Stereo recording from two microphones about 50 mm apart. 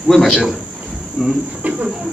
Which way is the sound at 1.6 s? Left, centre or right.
Right.